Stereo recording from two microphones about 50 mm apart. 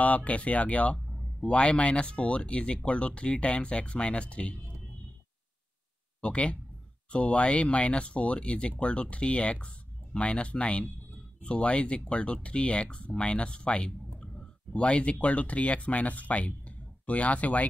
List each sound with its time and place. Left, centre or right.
0.0 s speech: left
6.2 s speech: left